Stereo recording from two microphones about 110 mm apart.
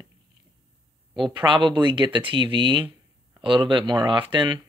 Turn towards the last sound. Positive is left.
turn(degrees=-45)  # may be behind; listen again after turning